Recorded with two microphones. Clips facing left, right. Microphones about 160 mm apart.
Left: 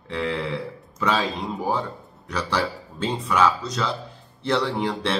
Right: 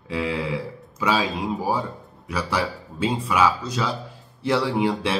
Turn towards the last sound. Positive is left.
turn(degrees=-5)  # may be behind; listen again after turning